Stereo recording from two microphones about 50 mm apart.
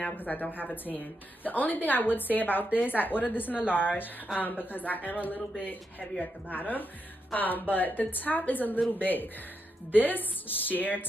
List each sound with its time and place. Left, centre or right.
0.0 s speech: left